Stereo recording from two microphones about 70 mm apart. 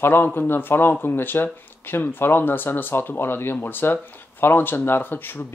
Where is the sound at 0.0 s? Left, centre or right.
Left.